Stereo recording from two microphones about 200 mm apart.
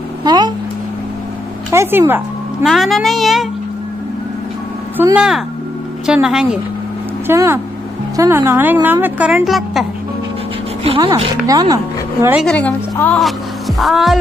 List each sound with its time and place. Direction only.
0.2 s a sound: 20° right (ahead or behind)
1.7 s a woman's voice: 10° right (ahead or behind)
4.9 s a woman's voice: 10° right (ahead or behind)
11.4 s speech: 15° right (ahead or behind)
12.4 s a woman's voice: 5° left (ahead or behind)